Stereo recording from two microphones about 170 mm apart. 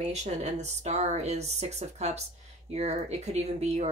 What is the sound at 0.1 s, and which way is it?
Speech, 40° right (ahead or behind).